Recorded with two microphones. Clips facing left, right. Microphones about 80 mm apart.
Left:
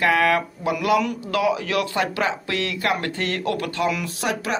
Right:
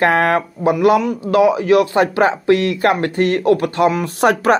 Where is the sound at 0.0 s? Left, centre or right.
Right.